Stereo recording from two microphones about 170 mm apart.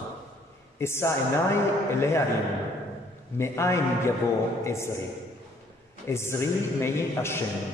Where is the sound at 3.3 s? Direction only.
15° left (ahead or behind).